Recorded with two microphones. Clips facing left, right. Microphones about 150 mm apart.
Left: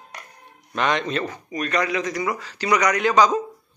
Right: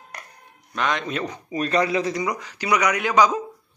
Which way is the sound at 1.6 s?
30° right (ahead or behind).